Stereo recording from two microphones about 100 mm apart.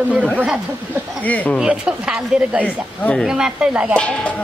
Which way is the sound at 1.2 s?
15° left (ahead or behind).